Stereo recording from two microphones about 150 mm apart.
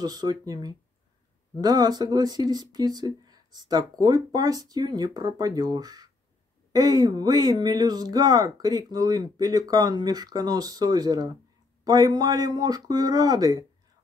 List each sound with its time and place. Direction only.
0.0 s speech: 25° right (ahead or behind)